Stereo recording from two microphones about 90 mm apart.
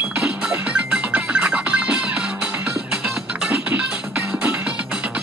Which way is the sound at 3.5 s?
20° right (ahead or behind).